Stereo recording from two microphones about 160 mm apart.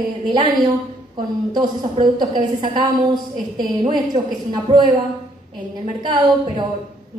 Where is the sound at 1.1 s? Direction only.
25° right (ahead or behind).